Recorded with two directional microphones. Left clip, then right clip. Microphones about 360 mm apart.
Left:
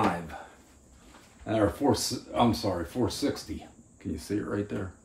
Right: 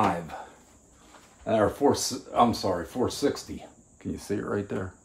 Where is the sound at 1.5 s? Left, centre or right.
Centre.